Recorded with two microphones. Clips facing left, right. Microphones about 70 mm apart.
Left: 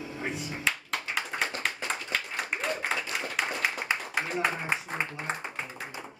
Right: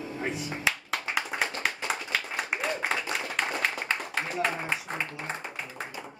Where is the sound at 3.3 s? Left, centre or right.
Centre.